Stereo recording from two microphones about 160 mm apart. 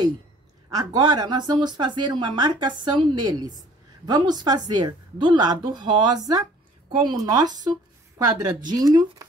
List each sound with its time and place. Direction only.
0.7 s a woman's voice: 25° right (ahead or behind)